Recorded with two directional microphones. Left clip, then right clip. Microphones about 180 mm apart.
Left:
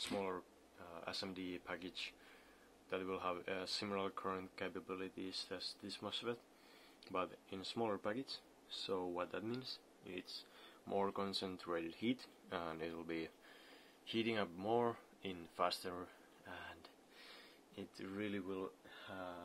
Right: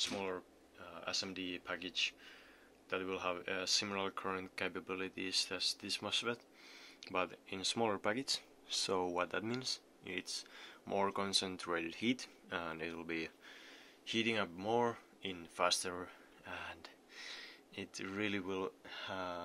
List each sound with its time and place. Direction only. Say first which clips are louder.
0.0 s speech: right 3 dB; 5° left (ahead or behind); by 19.4 s 30° right (ahead or behind)